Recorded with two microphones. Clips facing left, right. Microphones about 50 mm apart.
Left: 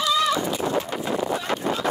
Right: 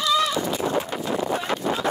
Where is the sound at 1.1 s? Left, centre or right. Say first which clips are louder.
Even; left.